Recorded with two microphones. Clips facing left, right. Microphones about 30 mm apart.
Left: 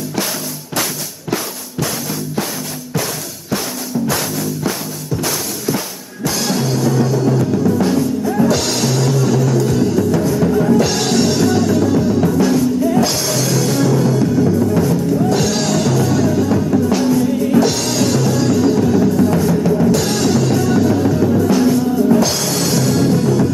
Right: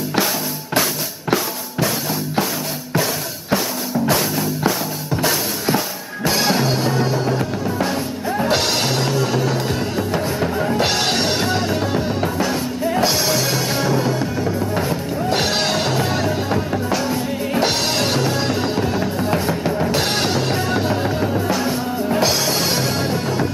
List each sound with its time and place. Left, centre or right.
6.2 s music: right
8.5 s music: right
21.3 s music: right